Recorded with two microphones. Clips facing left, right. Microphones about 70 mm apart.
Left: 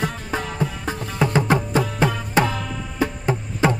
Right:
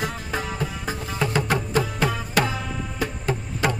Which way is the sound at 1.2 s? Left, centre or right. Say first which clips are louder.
Left 5 dB; left.